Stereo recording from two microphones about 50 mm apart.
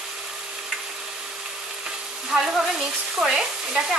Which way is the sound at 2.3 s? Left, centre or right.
Centre.